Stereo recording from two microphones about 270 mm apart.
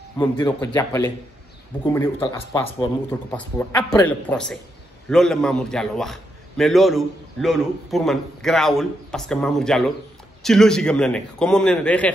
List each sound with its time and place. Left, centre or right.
0.2 s a man's voice: centre